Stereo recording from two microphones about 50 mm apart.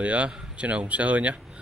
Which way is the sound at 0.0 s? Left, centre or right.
Right.